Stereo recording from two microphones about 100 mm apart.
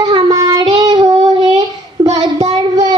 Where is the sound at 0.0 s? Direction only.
40° right (ahead or behind).